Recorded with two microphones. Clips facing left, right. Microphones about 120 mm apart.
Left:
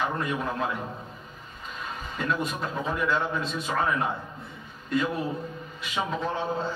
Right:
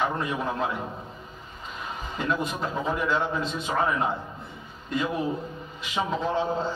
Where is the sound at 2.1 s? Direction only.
25° right (ahead or behind).